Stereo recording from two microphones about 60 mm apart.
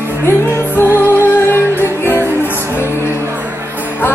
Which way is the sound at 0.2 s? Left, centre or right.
Left.